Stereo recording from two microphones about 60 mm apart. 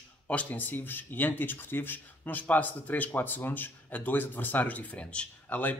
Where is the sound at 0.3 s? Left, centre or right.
Left.